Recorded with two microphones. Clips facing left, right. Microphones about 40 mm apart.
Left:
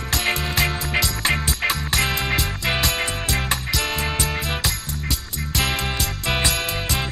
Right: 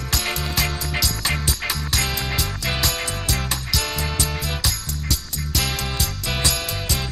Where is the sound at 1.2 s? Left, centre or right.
Centre.